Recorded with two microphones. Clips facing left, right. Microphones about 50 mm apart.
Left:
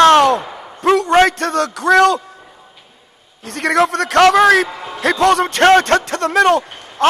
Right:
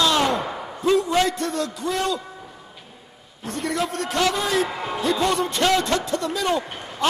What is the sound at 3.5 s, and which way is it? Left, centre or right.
A man's voice, left.